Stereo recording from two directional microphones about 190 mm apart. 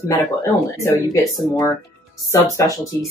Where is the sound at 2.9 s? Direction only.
15° left (ahead or behind).